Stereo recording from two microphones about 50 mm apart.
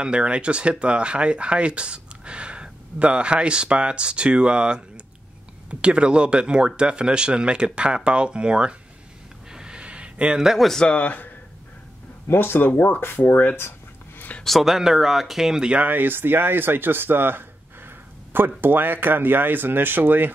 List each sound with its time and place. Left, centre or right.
0.0 s speech: right
9.5 s a sound: centre
11.0 s speech: left
12.3 s speech: left
13.6 s a sound: left
14.6 s speech: centre
15.8 s speech: right